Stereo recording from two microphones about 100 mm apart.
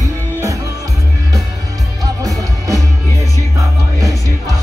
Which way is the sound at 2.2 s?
35° right (ahead or behind).